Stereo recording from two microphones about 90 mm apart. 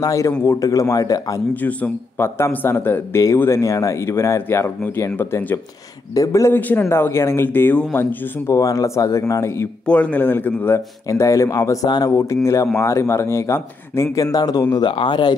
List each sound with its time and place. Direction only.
0.0 s speech: 40° left (ahead or behind)
1.5 s a man's voice: 15° left (ahead or behind)
2.1 s speech: 30° left (ahead or behind)
8.5 s speech: 40° left (ahead or behind)
9.8 s speech: 15° left (ahead or behind)
11.1 s speech: 35° left (ahead or behind)
14.1 s speech: 40° left (ahead or behind)
14.9 s speech: 65° left (ahead or behind)